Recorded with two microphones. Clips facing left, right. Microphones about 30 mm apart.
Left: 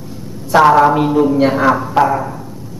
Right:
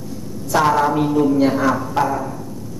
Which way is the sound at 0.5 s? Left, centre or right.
Left.